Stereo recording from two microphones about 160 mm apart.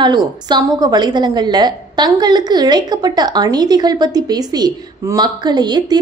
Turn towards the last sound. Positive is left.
turn(degrees=-25)  # may be behind; listen again after turning